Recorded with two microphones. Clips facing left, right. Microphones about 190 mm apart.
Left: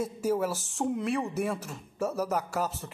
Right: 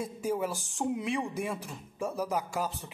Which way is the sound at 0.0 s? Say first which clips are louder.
Left 3 dB; 5° left (ahead or behind).